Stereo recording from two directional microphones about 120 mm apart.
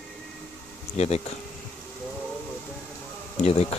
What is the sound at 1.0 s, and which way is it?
Speech, 60° left (ahead or behind).